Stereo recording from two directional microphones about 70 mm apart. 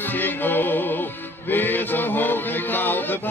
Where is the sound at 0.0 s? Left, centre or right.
Left.